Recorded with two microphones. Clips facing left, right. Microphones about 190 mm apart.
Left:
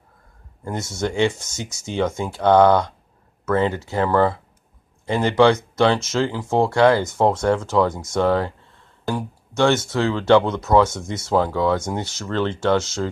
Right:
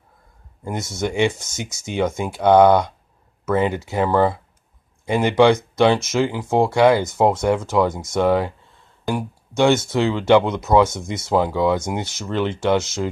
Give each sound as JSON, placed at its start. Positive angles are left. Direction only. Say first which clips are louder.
{"t": 0.7, "sound": "speech", "louder": "even", "side_deg": -15}